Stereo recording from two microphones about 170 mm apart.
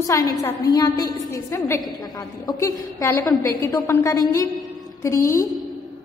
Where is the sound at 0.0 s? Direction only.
20° left (ahead or behind).